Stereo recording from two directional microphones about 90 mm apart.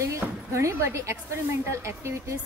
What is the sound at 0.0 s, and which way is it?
Speech, 35° right (ahead or behind).